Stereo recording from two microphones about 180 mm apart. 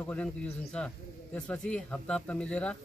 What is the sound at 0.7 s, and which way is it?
Speech, 5° left (ahead or behind).